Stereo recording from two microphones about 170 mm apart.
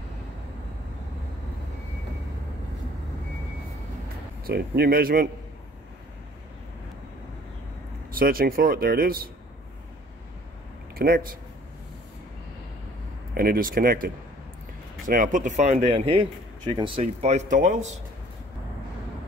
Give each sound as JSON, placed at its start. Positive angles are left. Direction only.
{"t": 4.5, "sound": "speech", "side_deg": -65}
{"t": 8.1, "sound": "speech", "side_deg": -60}
{"t": 11.0, "sound": "speech", "side_deg": -60}
{"t": 13.3, "sound": "speech", "side_deg": -60}